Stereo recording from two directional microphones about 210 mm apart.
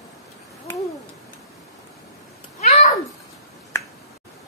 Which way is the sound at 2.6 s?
35° left (ahead or behind).